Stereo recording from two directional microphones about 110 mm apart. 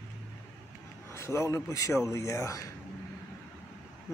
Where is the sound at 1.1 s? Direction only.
25° left (ahead or behind).